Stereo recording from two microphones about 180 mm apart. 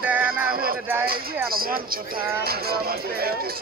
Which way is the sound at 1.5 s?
55° right (ahead or behind).